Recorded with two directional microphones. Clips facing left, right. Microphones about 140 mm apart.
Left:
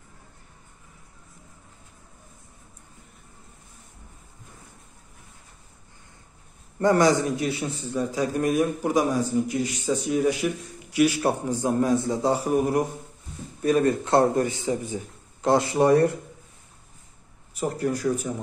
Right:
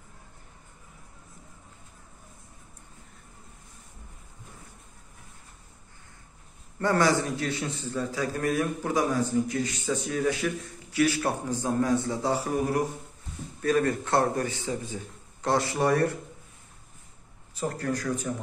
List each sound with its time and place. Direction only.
6.8 s a man's voice: 15° left (ahead or behind)
17.6 s a man's voice: 15° left (ahead or behind)